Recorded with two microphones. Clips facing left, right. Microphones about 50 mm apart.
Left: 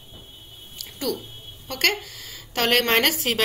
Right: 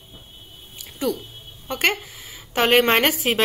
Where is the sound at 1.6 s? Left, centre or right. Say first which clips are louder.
Right 2 dB; right.